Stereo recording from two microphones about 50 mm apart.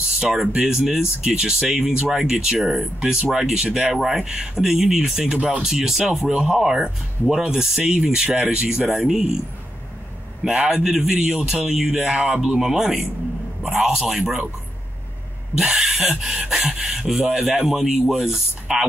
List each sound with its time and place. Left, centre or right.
0.0 s speech: centre
10.4 s speech: centre
15.5 s speech: centre